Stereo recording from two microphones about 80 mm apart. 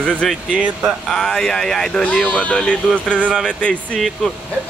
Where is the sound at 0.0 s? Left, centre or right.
Centre.